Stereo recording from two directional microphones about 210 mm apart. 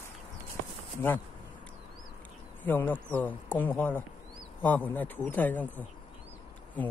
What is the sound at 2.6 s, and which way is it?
A man's voice, 10° left (ahead or behind).